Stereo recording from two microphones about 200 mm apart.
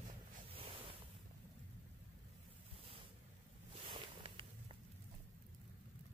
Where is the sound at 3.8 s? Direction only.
25° right (ahead or behind).